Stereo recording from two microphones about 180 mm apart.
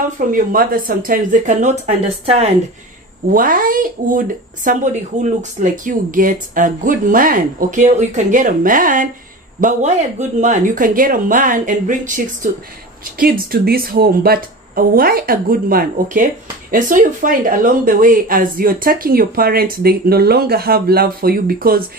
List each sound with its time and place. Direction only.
0.3 s speech: 50° right (ahead or behind)
3.3 s speech: 50° right (ahead or behind)
13.2 s speech: 55° right (ahead or behind)